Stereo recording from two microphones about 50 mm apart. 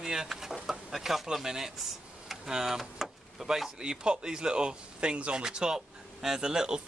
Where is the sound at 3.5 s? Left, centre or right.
Centre.